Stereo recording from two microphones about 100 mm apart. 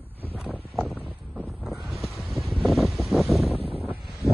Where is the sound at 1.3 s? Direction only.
Centre (ahead or behind).